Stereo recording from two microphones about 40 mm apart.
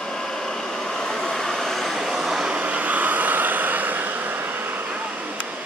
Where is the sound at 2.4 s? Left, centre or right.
Right.